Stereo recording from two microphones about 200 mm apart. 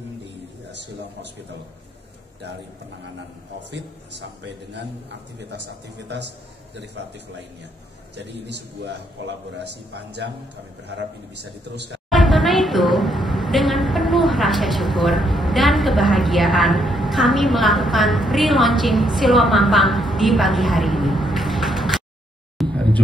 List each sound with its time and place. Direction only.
3.7 s a man's voice: 60° right (ahead or behind)
6.0 s a man's voice: 60° right (ahead or behind)
8.2 s a man's voice: 60° right (ahead or behind)
12.1 s a woman's voice: centre (ahead or behind)
22.6 s a sound: 5° left (ahead or behind)